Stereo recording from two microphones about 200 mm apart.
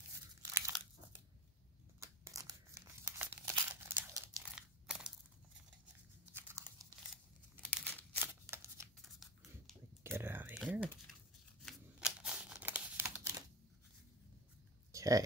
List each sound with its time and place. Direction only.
0.6 s crunch: 15° right (ahead or behind)
2.0 s tearing: 15° right (ahead or behind)
3.9 s crumpling: 5° right (ahead or behind)
6.2 s chewing: 10° right (ahead or behind)
7.7 s crumpling: 10° left (ahead or behind)
8.2 s shuffling cards: 10° right (ahead or behind)
9.0 s a sound: centre (ahead or behind)
10.1 s typing: 10° right (ahead or behind)
11.6 s crumpling: 5° right (ahead or behind)
14.9 s a sound: 15° right (ahead or behind)